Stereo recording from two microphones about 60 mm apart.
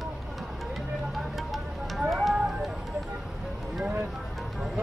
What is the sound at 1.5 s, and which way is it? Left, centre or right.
Music, centre.